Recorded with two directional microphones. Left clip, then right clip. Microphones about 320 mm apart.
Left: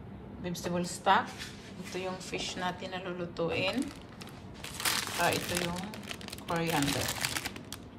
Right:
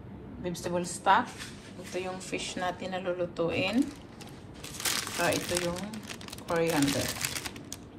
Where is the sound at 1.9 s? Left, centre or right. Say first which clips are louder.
Right 2 dB; centre.